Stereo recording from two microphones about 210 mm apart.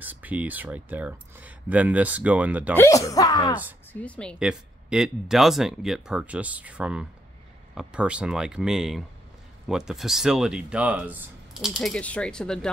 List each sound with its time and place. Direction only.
0.0 s speech: 10° right (ahead or behind)
2.7 s speech: 15° left (ahead or behind)
3.9 s speech: 5° left (ahead or behind)